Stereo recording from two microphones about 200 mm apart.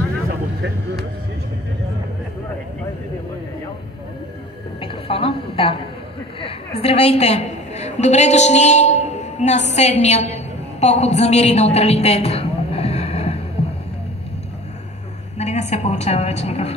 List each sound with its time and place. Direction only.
4.7 s a sound: 30° left (ahead or behind)
6.4 s a woman's voice: 30° left (ahead or behind)
15.3 s a woman's voice: 35° left (ahead or behind)